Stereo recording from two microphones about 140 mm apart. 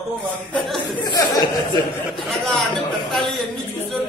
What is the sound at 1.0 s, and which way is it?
Speech, 30° left (ahead or behind).